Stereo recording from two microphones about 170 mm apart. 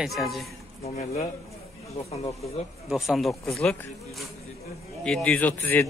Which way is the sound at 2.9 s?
Centre (ahead or behind).